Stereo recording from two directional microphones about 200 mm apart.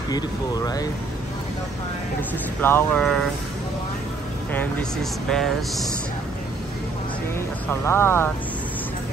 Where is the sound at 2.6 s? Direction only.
10° left (ahead or behind).